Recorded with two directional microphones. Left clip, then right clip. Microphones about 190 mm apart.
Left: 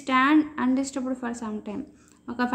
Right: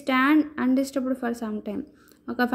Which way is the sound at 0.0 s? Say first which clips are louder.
Even; 30° right (ahead or behind).